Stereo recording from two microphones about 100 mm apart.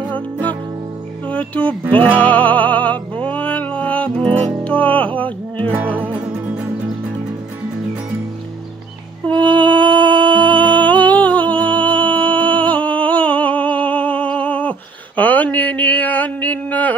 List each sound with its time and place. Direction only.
1.2 s music: 15° left (ahead or behind)
6.2 s music: 10° right (ahead or behind)
9.6 s music: 15° left (ahead or behind)